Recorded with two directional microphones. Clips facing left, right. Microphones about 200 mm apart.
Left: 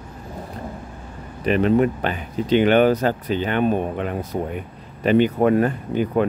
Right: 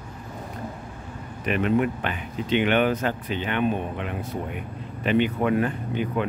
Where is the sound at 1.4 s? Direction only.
35° left (ahead or behind).